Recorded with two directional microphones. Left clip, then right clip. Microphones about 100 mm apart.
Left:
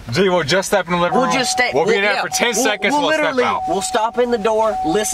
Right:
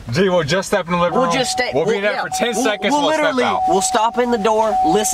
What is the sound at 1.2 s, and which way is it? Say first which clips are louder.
Speech: even; 30° left (ahead or behind).